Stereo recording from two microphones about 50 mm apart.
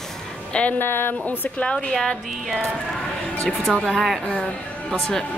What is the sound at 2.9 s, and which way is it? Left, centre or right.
Music, centre.